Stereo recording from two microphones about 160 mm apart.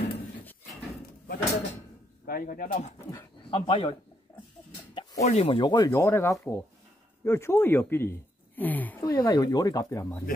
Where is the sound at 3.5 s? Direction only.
35° left (ahead or behind).